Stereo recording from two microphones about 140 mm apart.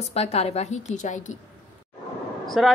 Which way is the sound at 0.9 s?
60° left (ahead or behind).